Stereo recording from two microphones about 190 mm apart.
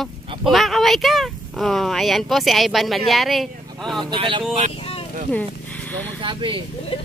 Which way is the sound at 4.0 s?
25° right (ahead or behind).